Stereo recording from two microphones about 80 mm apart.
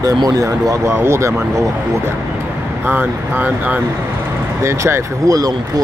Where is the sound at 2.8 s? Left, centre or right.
Right.